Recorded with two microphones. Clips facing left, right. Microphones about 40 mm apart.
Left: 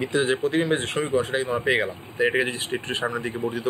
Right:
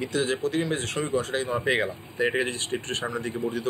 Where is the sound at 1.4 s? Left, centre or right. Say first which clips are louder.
Left 2 dB; centre.